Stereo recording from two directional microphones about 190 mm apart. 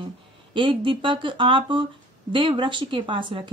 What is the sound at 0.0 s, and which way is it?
Speech, 25° right (ahead or behind).